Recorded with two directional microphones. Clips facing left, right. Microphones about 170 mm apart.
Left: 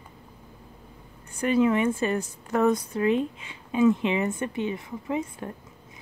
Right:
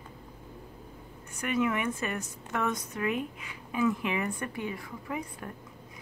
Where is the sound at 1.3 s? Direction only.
30° left (ahead or behind).